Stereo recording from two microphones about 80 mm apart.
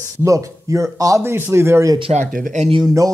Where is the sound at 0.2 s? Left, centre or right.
Right.